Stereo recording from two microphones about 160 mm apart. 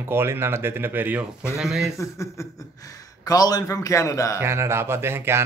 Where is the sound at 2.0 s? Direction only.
20° left (ahead or behind).